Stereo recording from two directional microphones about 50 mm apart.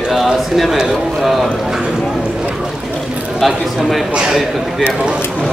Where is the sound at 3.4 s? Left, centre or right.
Centre.